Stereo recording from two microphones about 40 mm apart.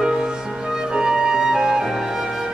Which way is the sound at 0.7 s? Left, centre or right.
Centre.